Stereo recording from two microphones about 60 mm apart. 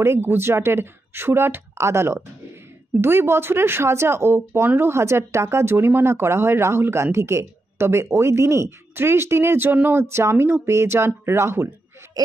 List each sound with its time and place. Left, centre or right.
0.0 s speech: right